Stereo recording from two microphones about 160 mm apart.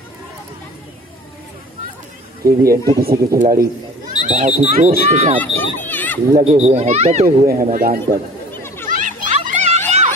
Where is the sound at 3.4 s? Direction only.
60° right (ahead or behind).